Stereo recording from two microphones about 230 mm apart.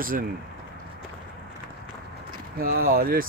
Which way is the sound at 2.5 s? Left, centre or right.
Right.